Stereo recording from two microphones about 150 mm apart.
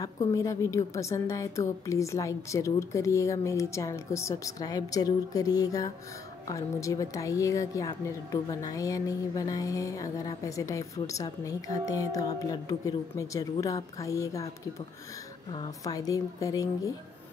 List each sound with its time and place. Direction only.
0.0 s a woman's voice: 20° left (ahead or behind)
15.8 s a woman's voice: 25° left (ahead or behind)